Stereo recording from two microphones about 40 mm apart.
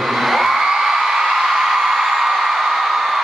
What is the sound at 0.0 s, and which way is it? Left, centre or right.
Music, centre.